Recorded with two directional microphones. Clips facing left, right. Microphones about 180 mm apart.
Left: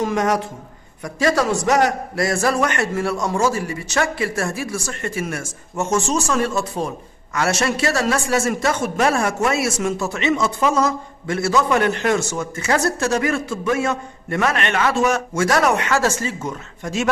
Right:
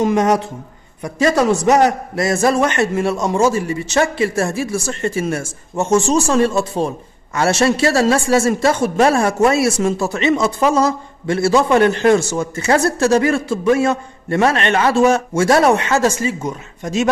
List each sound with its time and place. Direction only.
0.0 s a man's voice: 25° right (ahead or behind)